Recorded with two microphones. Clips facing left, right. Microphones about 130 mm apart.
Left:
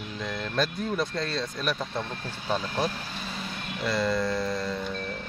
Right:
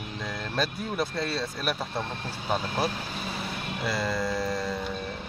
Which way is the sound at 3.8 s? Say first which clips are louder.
Left 3 dB; 5° right (ahead or behind).